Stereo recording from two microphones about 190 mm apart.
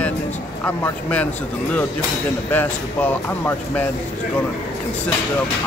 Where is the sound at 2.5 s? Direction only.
10° left (ahead or behind).